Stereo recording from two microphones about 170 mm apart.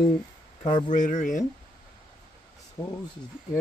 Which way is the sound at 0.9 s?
45° left (ahead or behind).